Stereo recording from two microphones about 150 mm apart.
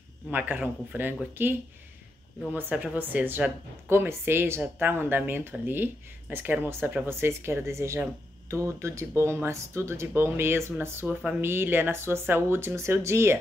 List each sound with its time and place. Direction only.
0.3 s speech: 10° right (ahead or behind)